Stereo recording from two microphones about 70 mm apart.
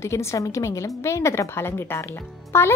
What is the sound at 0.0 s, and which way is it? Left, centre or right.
Speech, left.